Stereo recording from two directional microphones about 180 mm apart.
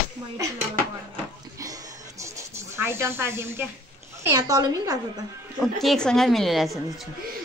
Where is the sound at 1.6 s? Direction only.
15° right (ahead or behind).